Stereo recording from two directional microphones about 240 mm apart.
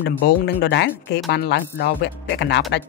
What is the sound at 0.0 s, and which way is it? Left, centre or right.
Speech, left.